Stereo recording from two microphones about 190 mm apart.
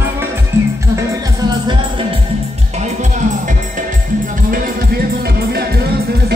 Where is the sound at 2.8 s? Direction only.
40° right (ahead or behind).